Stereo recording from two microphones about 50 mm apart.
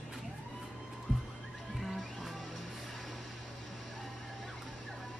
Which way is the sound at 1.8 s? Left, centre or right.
Centre.